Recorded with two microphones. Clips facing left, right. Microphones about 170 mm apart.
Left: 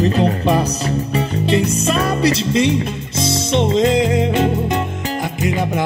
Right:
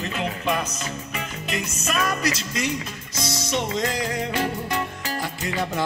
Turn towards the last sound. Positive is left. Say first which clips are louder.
# left 8 dB
turn(degrees=20)  # may be behind; listen again after turning